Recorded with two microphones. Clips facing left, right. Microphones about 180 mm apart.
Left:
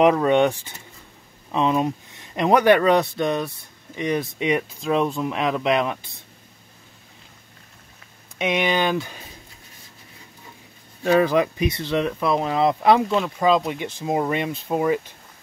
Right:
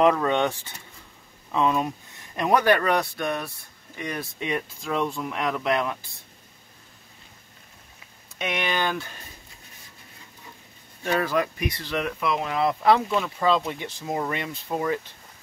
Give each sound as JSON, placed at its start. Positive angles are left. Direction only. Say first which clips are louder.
{"t": 0.0, "sound": "speech", "louder": "left 4 dB", "side_deg": 20}
{"t": 8.4, "sound": "speech", "louder": "left 6 dB", "side_deg": 15}
{"t": 11.1, "sound": "speech", "louder": "left 6 dB", "side_deg": 15}